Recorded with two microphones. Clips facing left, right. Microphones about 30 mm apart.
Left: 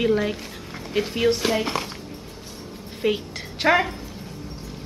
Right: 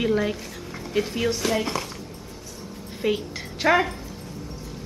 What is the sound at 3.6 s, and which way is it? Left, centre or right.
Speech, centre.